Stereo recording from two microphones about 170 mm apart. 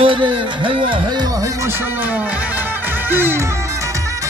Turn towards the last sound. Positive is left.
turn(degrees=-10)  # may be behind; listen again after turning